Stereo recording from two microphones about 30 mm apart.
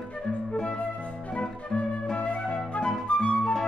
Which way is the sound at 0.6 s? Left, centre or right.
Left.